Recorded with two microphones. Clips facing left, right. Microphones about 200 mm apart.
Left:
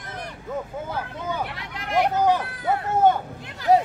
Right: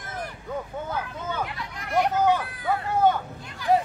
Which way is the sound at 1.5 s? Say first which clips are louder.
Left 1 dB; 80° left.